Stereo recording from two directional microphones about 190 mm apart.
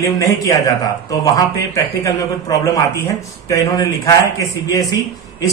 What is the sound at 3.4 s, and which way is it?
Speech, 15° left (ahead or behind).